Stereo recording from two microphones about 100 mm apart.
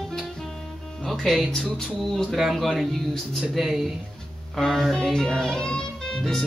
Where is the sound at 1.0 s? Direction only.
Centre (ahead or behind).